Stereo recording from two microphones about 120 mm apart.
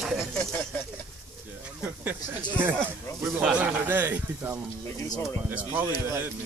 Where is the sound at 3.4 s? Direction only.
10° right (ahead or behind).